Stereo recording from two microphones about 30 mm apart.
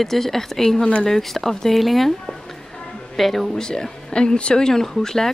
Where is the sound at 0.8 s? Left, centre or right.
Left.